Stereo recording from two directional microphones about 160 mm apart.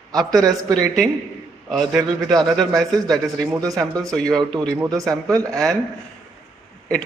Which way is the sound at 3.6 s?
20° right (ahead or behind).